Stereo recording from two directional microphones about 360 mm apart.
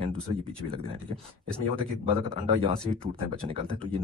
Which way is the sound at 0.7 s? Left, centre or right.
Centre.